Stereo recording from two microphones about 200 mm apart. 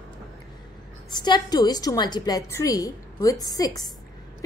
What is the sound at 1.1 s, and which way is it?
A woman's voice, 20° left (ahead or behind).